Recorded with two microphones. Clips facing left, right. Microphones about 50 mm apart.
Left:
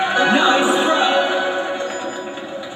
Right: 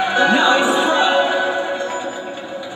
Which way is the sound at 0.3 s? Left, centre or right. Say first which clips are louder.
Left 1 dB; left.